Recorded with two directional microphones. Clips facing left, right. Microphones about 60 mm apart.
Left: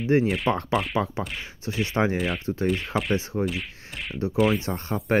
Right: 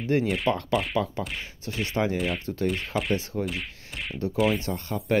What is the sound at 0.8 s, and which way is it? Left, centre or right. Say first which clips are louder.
Speech: left 1 dB; centre.